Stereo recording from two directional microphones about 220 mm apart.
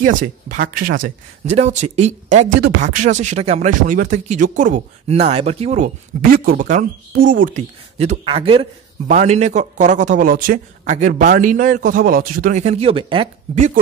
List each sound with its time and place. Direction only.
0.0 s a man's voice: 35° right (ahead or behind)
6.3 s a man's voice: 40° right (ahead or behind)